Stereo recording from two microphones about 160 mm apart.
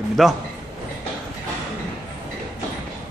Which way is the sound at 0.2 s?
Centre (ahead or behind).